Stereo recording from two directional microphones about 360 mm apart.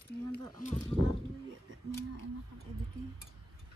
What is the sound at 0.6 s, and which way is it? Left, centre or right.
Speech, left.